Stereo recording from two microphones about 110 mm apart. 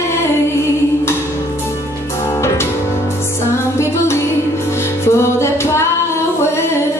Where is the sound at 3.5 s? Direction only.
25° left (ahead or behind).